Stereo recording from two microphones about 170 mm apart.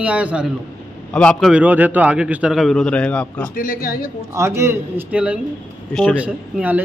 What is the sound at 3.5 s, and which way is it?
Speech, 55° left (ahead or behind).